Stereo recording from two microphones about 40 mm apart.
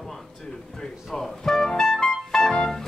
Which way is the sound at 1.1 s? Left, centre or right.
Centre.